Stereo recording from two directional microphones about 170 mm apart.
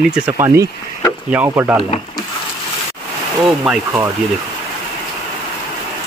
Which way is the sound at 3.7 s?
Centre (ahead or behind).